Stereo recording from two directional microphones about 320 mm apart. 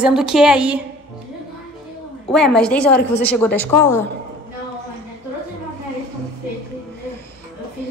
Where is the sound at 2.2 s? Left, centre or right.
Centre.